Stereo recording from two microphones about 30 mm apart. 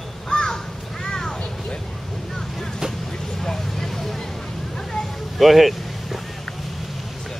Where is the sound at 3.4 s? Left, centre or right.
Centre.